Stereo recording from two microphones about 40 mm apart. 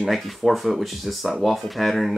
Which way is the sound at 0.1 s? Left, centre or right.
Centre.